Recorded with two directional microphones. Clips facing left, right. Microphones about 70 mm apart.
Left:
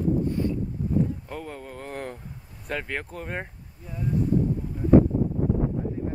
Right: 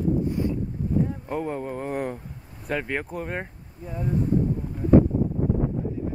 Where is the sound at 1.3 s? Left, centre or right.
Centre.